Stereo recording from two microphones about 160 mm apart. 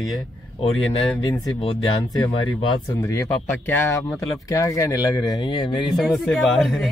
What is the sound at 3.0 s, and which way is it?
Speech, 20° left (ahead or behind).